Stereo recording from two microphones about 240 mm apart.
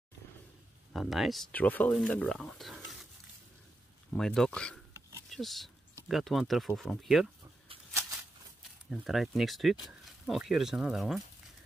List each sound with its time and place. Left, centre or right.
0.9 s speech: centre
4.1 s speech: centre
7.6 s a sound: right
8.9 s speech: centre